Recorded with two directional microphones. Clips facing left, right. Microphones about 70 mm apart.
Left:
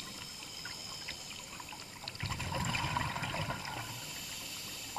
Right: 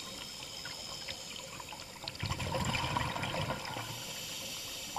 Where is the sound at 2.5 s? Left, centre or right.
Centre.